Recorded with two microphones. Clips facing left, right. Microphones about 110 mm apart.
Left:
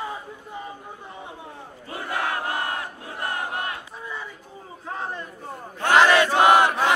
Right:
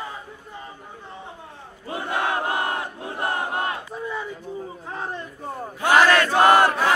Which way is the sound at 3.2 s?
25° right (ahead or behind).